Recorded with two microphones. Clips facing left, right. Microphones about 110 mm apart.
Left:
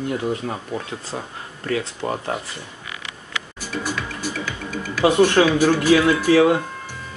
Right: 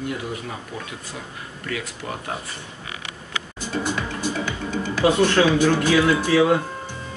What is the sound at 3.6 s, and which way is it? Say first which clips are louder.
Music: right 2 dB; 20° right (ahead or behind).